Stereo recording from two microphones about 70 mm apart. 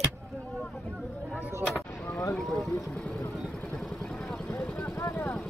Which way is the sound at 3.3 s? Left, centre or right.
Centre.